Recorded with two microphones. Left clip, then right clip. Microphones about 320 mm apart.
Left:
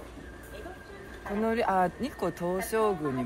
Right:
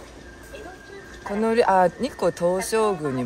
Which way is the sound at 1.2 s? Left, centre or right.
Right.